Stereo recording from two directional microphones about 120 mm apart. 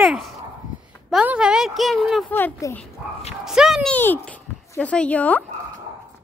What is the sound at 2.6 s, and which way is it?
Speech, 25° left (ahead or behind).